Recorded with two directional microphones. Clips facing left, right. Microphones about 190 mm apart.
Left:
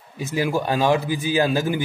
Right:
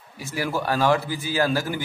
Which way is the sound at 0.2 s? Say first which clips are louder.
Left 4 dB; 20° left (ahead or behind).